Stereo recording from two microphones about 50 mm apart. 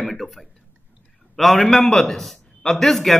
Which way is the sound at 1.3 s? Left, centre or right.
Centre.